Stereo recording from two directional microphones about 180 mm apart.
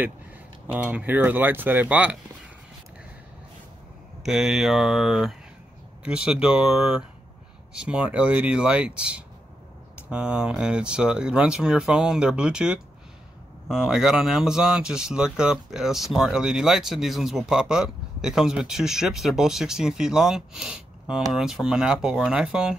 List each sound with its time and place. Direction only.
0.7 s speech: 10° right (ahead or behind)
4.2 s speech: centre (ahead or behind)